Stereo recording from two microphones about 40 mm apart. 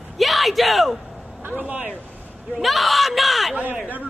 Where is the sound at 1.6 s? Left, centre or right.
Right.